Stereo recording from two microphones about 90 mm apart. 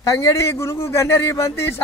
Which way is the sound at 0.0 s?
35° left (ahead or behind).